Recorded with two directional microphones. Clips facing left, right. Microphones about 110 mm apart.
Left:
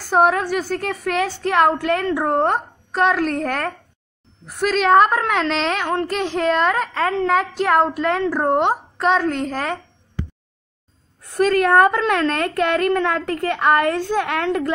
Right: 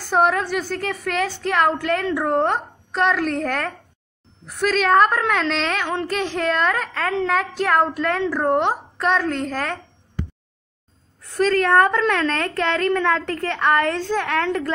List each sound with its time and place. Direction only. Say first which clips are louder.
0.1 s a woman's voice: left 2 dB; 10° left (ahead or behind)
11.3 s a woman's voice: left 2 dB; 15° left (ahead or behind)